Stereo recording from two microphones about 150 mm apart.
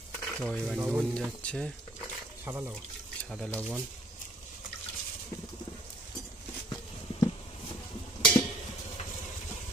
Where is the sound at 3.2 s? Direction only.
Centre (ahead or behind).